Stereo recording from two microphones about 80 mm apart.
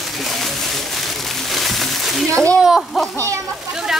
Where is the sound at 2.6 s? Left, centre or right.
Centre.